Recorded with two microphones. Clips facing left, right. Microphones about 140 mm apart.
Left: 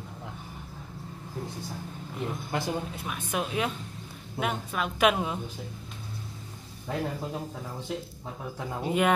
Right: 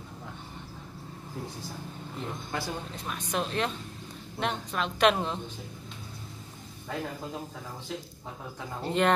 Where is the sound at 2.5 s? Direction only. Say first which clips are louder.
Left 3 dB; 20° left (ahead or behind).